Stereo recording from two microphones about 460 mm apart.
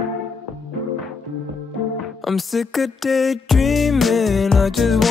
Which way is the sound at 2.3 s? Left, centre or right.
Centre.